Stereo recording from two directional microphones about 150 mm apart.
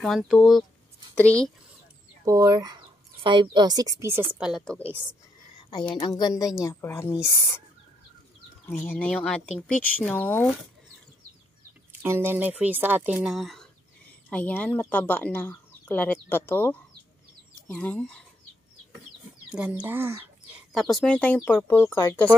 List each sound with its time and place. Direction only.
0.0 s speech: centre (ahead or behind)
2.2 s speech: 25° right (ahead or behind)
4.0 s speech: 15° right (ahead or behind)
4.5 s speech: 5° left (ahead or behind)
5.6 s a woman's voice: 30° left (ahead or behind); by 7.2 s 15° left (ahead or behind)
8.6 s speech: 10° left (ahead or behind)
12.0 s speech: 15° right (ahead or behind); by 18.2 s 10° left (ahead or behind)
19.5 s speech: 10° right (ahead or behind)
20.7 s speech: centre (ahead or behind)